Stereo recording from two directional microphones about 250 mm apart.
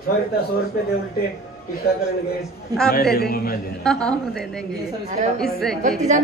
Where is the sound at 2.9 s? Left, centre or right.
Left.